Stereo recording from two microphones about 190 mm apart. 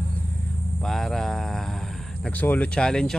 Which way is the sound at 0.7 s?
Centre (ahead or behind).